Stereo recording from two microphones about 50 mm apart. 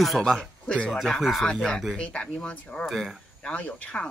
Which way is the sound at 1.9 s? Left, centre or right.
Centre.